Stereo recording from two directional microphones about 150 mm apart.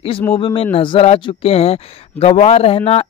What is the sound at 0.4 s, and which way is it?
Speech, 35° left (ahead or behind).